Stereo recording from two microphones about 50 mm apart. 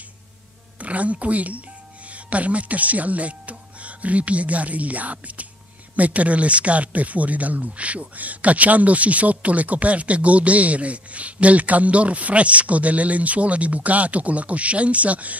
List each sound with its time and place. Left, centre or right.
0.7 s speech: right